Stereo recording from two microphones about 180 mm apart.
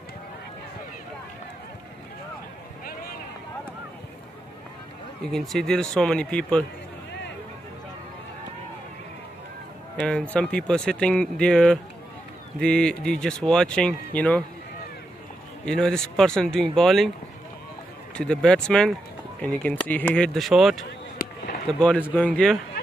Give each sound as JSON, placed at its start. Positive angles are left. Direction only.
{"t": 2.8, "sound": "a sound", "side_deg": 55}
{"t": 5.3, "sound": "speech", "side_deg": 0}
{"t": 10.3, "sound": "speech", "side_deg": 5}
{"t": 15.6, "sound": "speech", "side_deg": 5}
{"t": 18.1, "sound": "speech", "side_deg": 5}
{"t": 21.2, "sound": "a sound", "side_deg": 60}
{"t": 21.7, "sound": "speech", "side_deg": 5}